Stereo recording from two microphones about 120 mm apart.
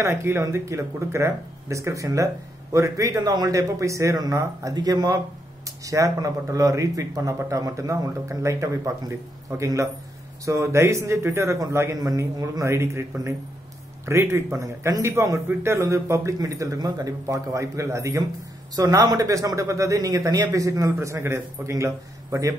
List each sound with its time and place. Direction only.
0.0 s a man's voice: 25° right (ahead or behind)
14.0 s a man's voice: 20° right (ahead or behind)